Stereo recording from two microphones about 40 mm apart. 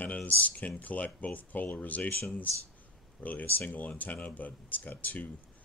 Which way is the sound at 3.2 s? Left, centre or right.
Left.